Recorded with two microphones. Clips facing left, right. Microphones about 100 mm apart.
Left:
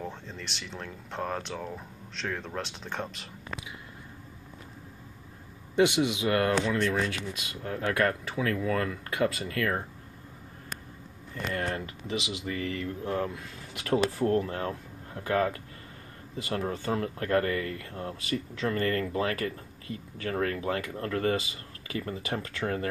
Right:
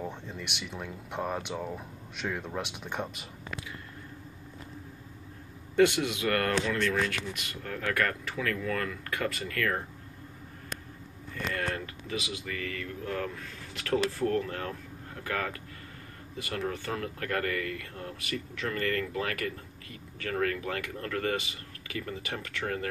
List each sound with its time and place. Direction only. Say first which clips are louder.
0.0 s speech: right 1 dB; 15° right (ahead or behind)
5.8 s speech: even; 15° left (ahead or behind)
11.3 s speech: left 1 dB; 30° left (ahead or behind)